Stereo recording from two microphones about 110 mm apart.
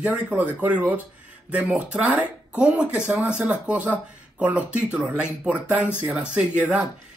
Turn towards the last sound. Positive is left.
turn(degrees=-10)  # may be behind; listen again after turning